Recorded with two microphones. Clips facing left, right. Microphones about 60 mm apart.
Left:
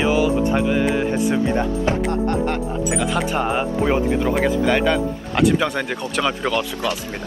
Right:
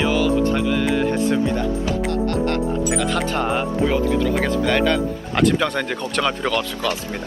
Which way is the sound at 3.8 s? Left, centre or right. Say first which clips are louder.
Even; left.